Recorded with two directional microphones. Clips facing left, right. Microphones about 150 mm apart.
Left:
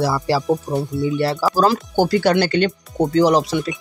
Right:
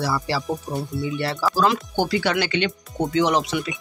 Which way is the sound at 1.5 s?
45° left (ahead or behind).